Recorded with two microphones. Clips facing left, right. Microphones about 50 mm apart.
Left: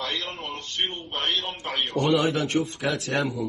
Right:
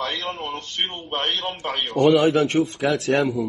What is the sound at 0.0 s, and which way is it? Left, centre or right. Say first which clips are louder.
A man's voice: right 4 dB; right.